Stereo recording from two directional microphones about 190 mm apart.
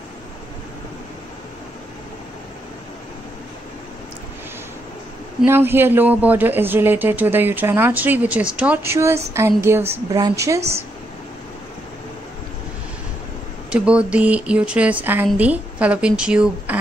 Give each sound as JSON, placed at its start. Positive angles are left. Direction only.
{"t": 5.5, "sound": "speech", "side_deg": -10}
{"t": 13.7, "sound": "speech", "side_deg": -5}